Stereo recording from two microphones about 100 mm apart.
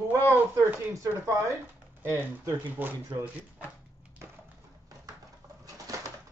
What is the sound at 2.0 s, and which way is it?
Speech, 25° right (ahead or behind).